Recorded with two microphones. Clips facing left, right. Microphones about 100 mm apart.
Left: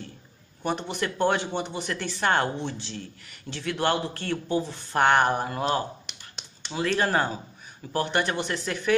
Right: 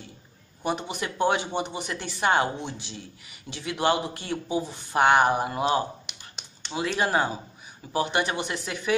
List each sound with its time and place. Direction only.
0.6 s speech: 10° right (ahead or behind)
6.0 s a sound: 5° right (ahead or behind)
7.0 s speech: 10° right (ahead or behind)